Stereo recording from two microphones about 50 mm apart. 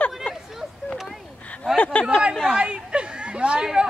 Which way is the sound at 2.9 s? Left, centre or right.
Centre.